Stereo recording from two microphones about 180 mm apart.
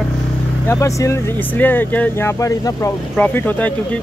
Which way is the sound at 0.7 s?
15° left (ahead or behind).